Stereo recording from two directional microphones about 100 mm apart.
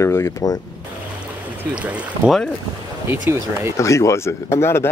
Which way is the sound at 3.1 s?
25° right (ahead or behind).